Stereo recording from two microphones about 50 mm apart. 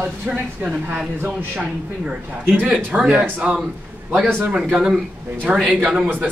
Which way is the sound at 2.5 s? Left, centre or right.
Right.